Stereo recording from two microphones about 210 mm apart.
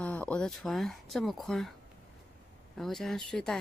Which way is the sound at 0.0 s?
5° left (ahead or behind).